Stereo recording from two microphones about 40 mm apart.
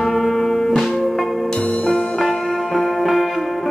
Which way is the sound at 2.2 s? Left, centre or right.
Centre.